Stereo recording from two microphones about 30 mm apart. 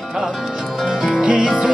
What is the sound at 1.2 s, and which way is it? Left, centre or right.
Music, right.